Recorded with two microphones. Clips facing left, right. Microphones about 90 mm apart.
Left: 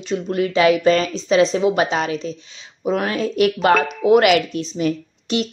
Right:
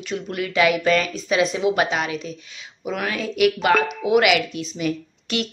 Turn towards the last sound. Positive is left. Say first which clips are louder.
# left 4 dB
turn(degrees=25)  # may be behind; listen again after turning